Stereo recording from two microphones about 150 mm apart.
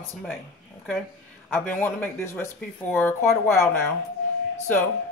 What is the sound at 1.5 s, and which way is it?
Speech, 10° left (ahead or behind).